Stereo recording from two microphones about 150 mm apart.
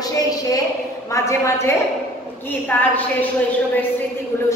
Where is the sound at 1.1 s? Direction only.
20° left (ahead or behind).